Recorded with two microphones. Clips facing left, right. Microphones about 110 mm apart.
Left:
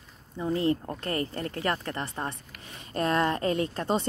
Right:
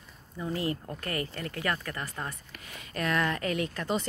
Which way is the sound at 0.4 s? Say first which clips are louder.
Left 6 dB; 25° left (ahead or behind).